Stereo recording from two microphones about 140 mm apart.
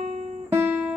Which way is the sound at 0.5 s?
15° right (ahead or behind).